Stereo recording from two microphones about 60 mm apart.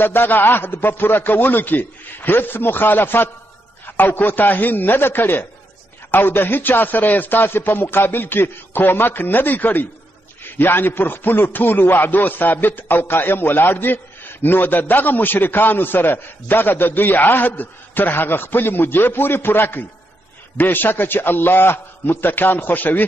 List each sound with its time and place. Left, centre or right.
0.0 s speech: left